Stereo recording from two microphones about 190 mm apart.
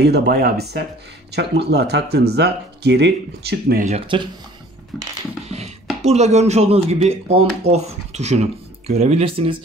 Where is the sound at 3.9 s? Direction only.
30° right (ahead or behind).